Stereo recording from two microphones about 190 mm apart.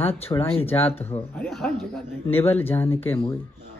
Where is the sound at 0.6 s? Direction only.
10° left (ahead or behind).